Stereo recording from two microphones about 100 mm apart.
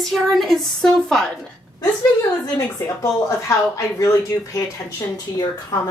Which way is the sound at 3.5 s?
30° left (ahead or behind).